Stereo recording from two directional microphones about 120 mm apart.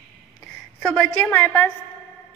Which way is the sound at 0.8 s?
10° left (ahead or behind).